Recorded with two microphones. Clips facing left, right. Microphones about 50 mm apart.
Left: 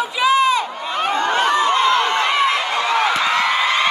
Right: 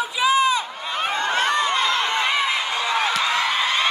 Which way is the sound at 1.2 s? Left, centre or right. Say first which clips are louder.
Left 4 dB; left.